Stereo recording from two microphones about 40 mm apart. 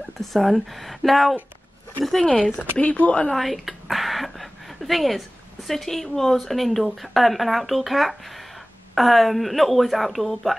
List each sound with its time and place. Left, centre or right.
0.2 s speech: centre
2.2 s speech: left
3.3 s a sound: centre
5.7 s speech: centre